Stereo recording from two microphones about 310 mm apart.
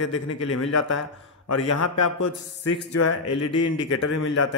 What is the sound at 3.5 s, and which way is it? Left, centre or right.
Speech, left.